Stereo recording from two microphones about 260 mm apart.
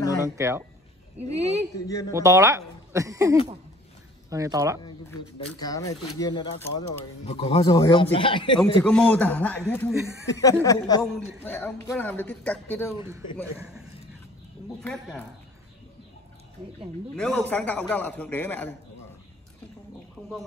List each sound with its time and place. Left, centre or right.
0.2 s speech: centre
1.3 s speech: right
1.9 s a man's voice: centre
2.1 s speech: centre
5.5 s a man's voice: centre
8.8 s a man's voice: centre
11.0 s a man's voice: centre
13.6 s a man's voice: centre
17.1 s a man's voice: centre
20.2 s speech: centre